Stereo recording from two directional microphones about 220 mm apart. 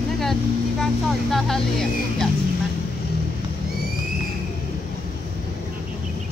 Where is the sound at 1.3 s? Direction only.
Centre (ahead or behind).